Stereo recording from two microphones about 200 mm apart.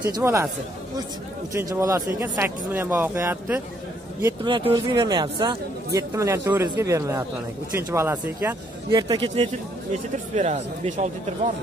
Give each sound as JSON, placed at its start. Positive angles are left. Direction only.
{"t": 0.1, "sound": "speech", "side_deg": -15}
{"t": 1.5, "sound": "speech", "side_deg": -15}
{"t": 10.3, "sound": "speech", "side_deg": -35}